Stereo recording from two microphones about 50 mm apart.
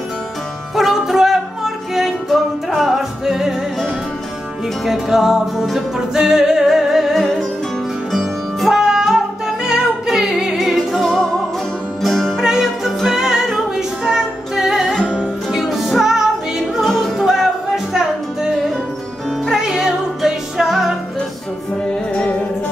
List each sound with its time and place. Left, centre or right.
0.7 s music: centre
4.8 s music: centre
10.6 s music: centre
12.4 s music: centre
16.8 s music: centre
17.2 s music: centre
19.4 s music: centre
22.1 s music: left